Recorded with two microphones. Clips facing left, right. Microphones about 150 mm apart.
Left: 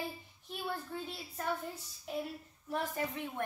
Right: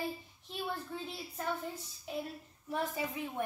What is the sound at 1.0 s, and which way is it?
A child's voice, centre (ahead or behind).